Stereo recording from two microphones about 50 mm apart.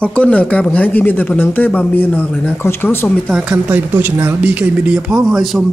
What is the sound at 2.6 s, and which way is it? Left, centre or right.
Speech, left.